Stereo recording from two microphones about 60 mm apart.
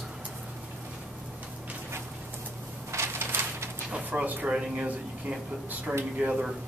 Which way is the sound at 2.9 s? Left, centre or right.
Right.